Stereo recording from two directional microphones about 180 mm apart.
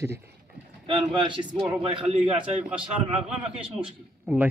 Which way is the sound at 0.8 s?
25° right (ahead or behind).